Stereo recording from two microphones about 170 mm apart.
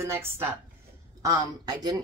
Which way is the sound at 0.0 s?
15° right (ahead or behind).